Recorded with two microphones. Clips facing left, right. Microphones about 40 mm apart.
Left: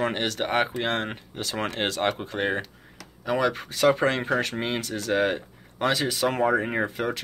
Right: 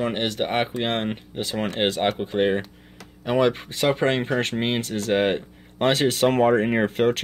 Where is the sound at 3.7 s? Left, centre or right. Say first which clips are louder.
Even; centre.